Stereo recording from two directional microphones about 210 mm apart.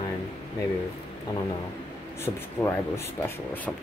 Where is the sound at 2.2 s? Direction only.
10° left (ahead or behind).